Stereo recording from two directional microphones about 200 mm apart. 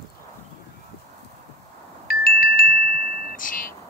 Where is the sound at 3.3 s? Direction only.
40° left (ahead or behind).